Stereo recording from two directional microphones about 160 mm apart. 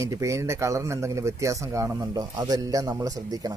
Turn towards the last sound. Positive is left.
turn(degrees=-20)  # may be behind; listen again after turning